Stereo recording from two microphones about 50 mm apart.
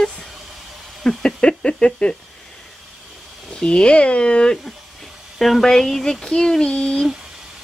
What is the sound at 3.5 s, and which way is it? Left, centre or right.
Speech, centre.